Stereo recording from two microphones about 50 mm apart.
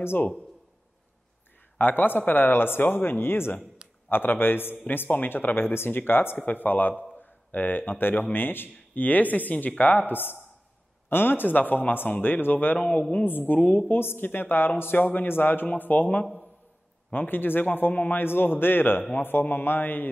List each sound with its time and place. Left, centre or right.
1.8 s speech: left
12.7 s a man's voice: centre
13.5 s speech: left
18.2 s speech: left